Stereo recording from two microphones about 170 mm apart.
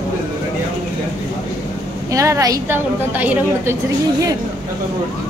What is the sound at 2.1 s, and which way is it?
A woman's voice, 20° right (ahead or behind).